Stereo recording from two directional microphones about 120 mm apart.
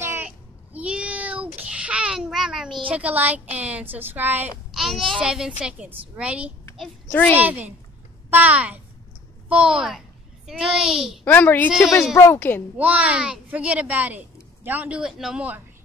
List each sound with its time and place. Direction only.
0.0 s a sound: 20° right (ahead or behind)
0.7 s child singing: 10° right (ahead or behind)
2.9 s speech: 15° right (ahead or behind)
4.7 s speech: centre (ahead or behind)
7.1 s a child's voice: 15° left (ahead or behind)
7.3 s a child's voice: 15° right (ahead or behind)
11.2 s a woman's voice: 15° left (ahead or behind)
11.7 s speech: centre (ahead or behind)
12.2 s a woman's voice: 20° left (ahead or behind)
12.7 s speech: 10° right (ahead or behind)